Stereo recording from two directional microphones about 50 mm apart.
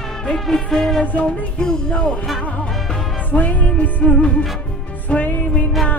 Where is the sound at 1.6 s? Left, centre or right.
Centre.